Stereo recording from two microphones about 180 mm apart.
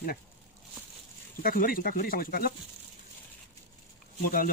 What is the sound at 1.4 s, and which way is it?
Speech, 50° left (ahead or behind).